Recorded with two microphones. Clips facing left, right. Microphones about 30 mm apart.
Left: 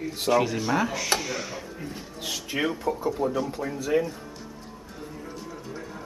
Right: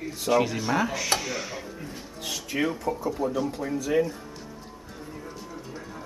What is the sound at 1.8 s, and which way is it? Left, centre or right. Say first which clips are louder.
Speech: left 2 dB; centre.